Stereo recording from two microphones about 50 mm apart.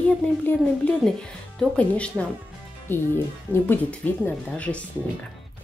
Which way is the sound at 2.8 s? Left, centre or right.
Left.